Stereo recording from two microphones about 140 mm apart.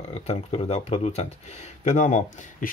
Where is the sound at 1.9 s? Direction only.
60° left (ahead or behind).